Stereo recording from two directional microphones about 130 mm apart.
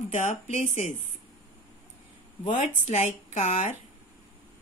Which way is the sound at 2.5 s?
70° left (ahead or behind).